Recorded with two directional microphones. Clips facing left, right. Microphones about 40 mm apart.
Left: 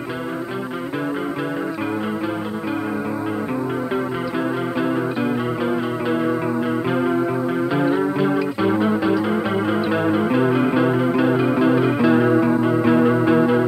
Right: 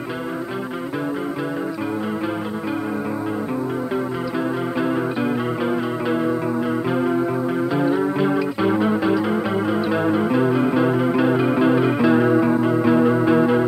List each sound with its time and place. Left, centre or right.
6.9 s music: left
8.2 s music: centre
9.3 s music: left
11.0 s music: centre
12.7 s music: left
13.3 s music: centre